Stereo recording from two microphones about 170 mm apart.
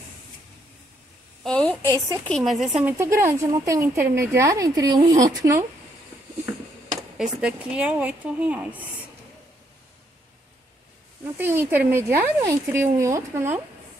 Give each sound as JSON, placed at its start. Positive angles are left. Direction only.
{"t": 1.4, "sound": "a woman's voice", "side_deg": 5}
{"t": 2.8, "sound": "speech", "side_deg": -15}
{"t": 7.2, "sound": "speech", "side_deg": -5}
{"t": 11.3, "sound": "speech", "side_deg": -10}